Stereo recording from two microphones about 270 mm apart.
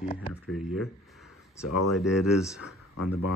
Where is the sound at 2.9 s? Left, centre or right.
Left.